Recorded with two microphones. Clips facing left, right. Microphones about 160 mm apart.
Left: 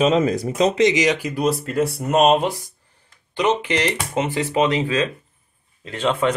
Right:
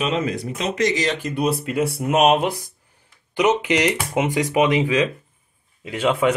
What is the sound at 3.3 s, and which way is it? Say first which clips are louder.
Speech: right 2 dB; 15° right (ahead or behind).